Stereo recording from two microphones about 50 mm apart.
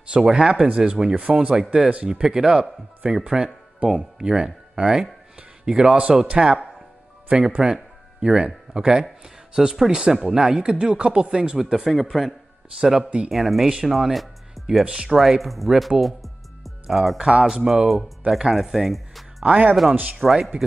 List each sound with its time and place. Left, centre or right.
0.1 s speech: centre
11.7 s speech: centre
14.9 s speech: centre
15.1 s speech: centre
16.0 s music: centre
16.9 s speech: centre
17.2 s speech: centre
19.4 s speech: right
19.7 s speech: centre